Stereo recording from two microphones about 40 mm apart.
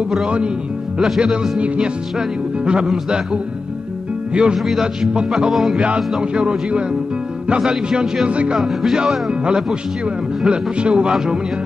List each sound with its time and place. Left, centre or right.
1.6 s music: right
4.3 s speech: right
4.6 s speech: centre
5.5 s music: centre
7.6 s speech: centre
8.3 s music: right